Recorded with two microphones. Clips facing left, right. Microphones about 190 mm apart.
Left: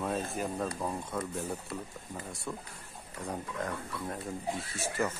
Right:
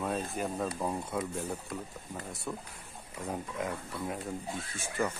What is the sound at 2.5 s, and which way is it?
Speech, 5° right (ahead or behind).